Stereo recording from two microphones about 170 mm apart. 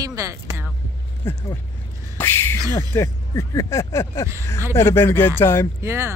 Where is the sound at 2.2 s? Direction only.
10° left (ahead or behind).